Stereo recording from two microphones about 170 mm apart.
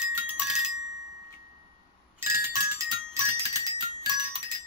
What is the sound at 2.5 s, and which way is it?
Music, 20° right (ahead or behind).